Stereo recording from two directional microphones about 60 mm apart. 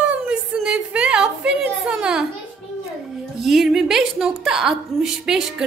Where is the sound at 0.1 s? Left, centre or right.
Right.